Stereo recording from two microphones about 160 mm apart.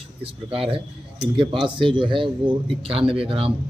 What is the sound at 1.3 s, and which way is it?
Speech, 30° right (ahead or behind).